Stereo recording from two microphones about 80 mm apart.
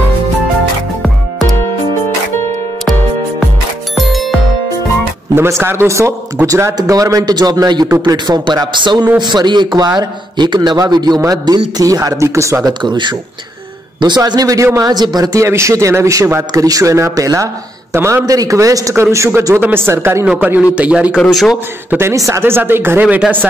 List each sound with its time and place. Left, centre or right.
2.8 s music: centre
5.3 s a man's voice: right
12.8 s a man's voice: right
15.4 s a man's voice: right
20.2 s a man's voice: right
21.2 s a man's voice: centre
22.1 s a man's voice: right
22.4 s speech: right
23.0 s speech: centre